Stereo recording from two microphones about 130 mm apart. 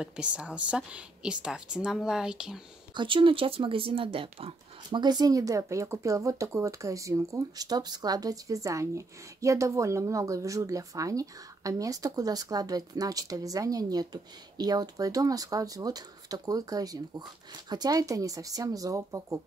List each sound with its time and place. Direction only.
0.0 s a woman's voice: 5° right (ahead or behind)
2.9 s speech: 40° right (ahead or behind)
5.0 s speech: 30° right (ahead or behind)